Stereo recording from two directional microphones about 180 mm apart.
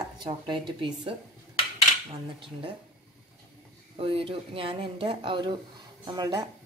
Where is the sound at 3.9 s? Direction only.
30° right (ahead or behind).